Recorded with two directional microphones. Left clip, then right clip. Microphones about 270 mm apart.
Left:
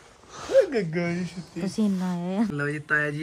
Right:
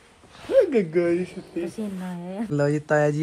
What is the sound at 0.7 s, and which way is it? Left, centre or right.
Speech, right.